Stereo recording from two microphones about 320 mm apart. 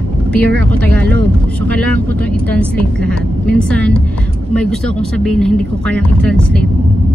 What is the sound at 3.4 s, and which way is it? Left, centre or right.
Speech, centre.